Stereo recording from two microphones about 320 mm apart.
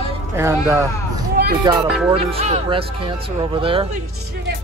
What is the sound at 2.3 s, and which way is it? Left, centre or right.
Speech, centre.